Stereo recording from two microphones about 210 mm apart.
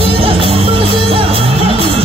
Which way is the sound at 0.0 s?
25° right (ahead or behind).